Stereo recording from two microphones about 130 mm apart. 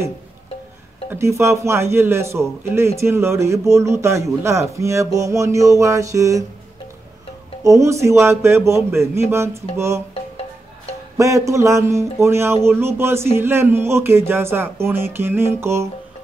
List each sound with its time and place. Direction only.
1.1 s a man's voice: 20° right (ahead or behind)
7.6 s a man's voice: 25° right (ahead or behind)
11.1 s a man's voice: 25° right (ahead or behind)